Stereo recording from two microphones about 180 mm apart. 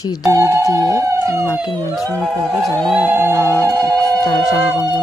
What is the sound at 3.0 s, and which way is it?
Speech, 10° right (ahead or behind).